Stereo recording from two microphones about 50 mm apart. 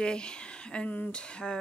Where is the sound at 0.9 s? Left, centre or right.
Left.